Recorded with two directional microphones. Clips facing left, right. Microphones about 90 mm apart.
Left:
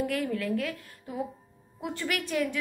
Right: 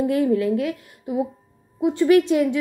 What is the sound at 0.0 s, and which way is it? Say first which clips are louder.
A woman's voice: right 10 dB; 20° right (ahead or behind).